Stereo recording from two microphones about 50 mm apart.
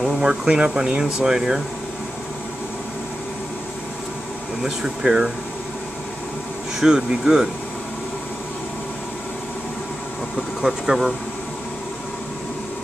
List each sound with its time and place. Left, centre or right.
0.0 s speech: centre
4.6 s speech: centre
6.8 s speech: centre
10.6 s speech: centre